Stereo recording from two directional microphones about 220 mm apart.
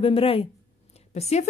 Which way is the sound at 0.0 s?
25° left (ahead or behind).